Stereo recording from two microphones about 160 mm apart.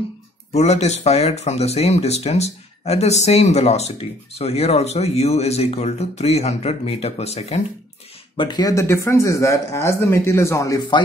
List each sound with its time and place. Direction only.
0.5 s speech: 45° left (ahead or behind)
8.4 s speech: 25° left (ahead or behind)